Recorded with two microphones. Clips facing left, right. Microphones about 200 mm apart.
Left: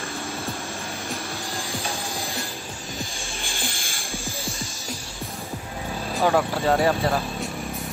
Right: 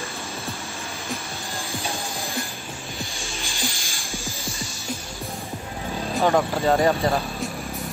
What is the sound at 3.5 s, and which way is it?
Music, 55° left (ahead or behind).